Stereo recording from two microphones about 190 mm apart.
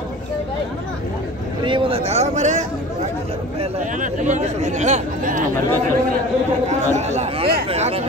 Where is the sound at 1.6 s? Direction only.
25° right (ahead or behind).